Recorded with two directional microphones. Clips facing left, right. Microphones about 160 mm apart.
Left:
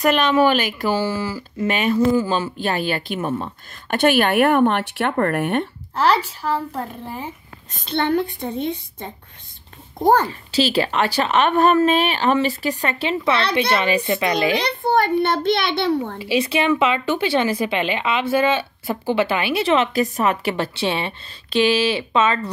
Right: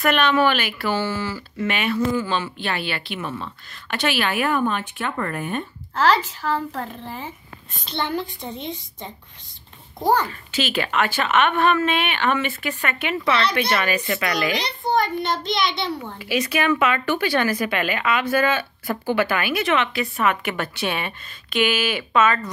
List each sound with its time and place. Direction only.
0.2 s speech: 35° left (ahead or behind); by 5.7 s 70° left (ahead or behind)
5.9 s a woman's voice: 10° left (ahead or behind)
7.9 s speech: 60° left (ahead or behind)
10.5 s speech: 35° left (ahead or behind)
14.6 s speech: 60° left (ahead or behind)
16.2 s speech: 30° left (ahead or behind)